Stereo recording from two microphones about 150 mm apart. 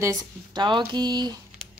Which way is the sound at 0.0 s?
25° right (ahead or behind).